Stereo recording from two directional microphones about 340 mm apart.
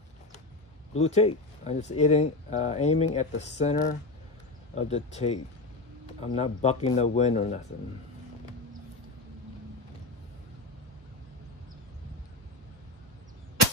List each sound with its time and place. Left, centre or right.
0.9 s speech: centre